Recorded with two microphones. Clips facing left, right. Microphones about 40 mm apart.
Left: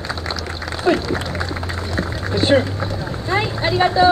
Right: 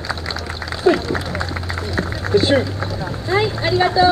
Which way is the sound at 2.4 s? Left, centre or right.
Left.